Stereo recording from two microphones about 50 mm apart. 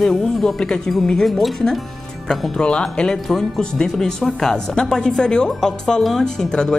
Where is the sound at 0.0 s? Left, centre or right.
Centre.